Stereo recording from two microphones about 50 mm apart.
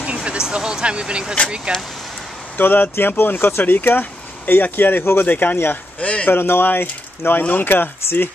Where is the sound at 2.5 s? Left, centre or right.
Left.